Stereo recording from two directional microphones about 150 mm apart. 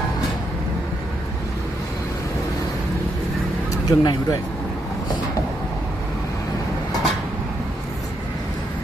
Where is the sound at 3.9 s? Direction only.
25° left (ahead or behind).